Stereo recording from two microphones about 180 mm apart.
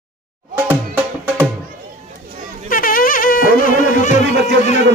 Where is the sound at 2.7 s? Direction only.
50° left (ahead or behind).